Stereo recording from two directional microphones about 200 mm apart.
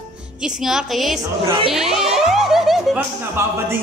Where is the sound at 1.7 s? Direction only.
Centre (ahead or behind).